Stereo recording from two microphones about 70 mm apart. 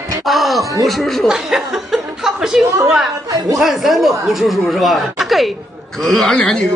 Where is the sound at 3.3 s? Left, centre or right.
Right.